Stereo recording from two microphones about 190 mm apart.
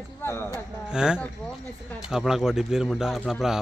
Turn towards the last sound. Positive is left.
turn(degrees=0)  # may be behind; listen again after turning